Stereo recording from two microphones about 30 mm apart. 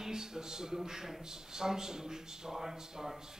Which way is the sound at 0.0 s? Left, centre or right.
Centre.